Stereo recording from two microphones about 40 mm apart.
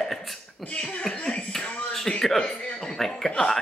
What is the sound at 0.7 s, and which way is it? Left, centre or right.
Speech, left.